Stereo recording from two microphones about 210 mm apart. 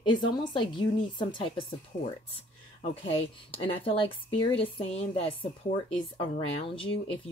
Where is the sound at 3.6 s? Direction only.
25° left (ahead or behind).